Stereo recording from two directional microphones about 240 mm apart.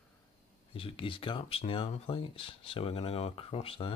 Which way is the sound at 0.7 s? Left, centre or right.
Left.